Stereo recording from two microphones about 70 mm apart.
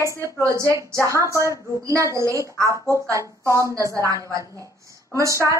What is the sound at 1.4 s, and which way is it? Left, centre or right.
A woman's voice, right.